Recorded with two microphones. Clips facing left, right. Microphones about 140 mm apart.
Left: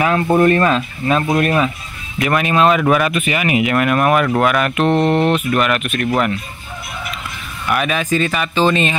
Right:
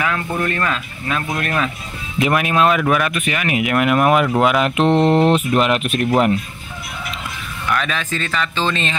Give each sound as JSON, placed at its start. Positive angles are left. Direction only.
{"t": 0.0, "sound": "speech", "side_deg": 30}
{"t": 2.3, "sound": "speech", "side_deg": -5}
{"t": 3.7, "sound": "speech", "side_deg": -10}
{"t": 4.8, "sound": "speech", "side_deg": 0}
{"t": 5.1, "sound": "speech", "side_deg": -30}
{"t": 7.7, "sound": "speech", "side_deg": 15}